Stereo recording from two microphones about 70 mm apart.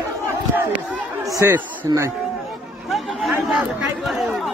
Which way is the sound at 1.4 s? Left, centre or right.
Right.